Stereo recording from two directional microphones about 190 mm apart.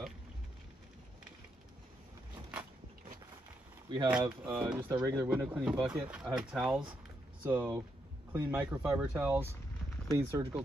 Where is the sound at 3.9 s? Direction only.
25° right (ahead or behind).